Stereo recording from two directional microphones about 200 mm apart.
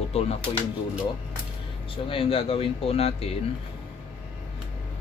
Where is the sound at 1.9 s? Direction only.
25° left (ahead or behind).